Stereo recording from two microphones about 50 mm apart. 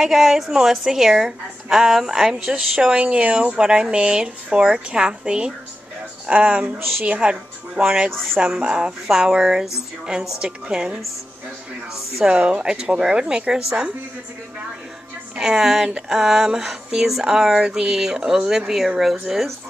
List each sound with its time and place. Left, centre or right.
0.0 s speech: centre
2.3 s speech: right
6.3 s speech: right; by 13.8 s centre
15.3 s speech: centre